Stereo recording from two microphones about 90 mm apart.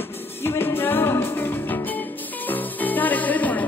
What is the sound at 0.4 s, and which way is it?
Music, 25° left (ahead or behind).